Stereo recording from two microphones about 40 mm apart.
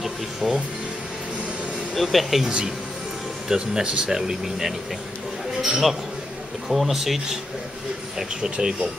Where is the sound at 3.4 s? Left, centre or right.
Centre.